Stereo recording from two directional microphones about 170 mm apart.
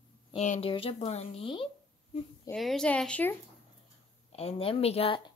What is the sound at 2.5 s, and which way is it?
Speech, centre (ahead or behind).